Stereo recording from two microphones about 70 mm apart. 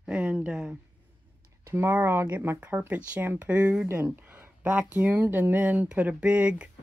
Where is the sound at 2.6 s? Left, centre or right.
Right.